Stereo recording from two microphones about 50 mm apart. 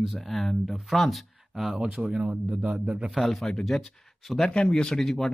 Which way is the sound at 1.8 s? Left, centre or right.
Centre.